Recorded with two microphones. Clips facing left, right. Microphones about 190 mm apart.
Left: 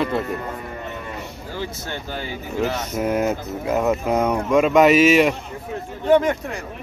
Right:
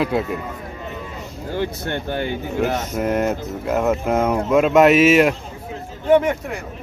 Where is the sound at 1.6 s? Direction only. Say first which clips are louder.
Right 6 dB; 60° right (ahead or behind).